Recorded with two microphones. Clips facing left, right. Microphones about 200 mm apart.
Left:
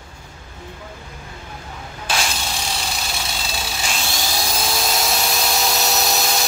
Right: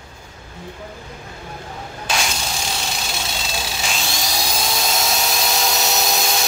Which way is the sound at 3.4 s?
Centre (ahead or behind).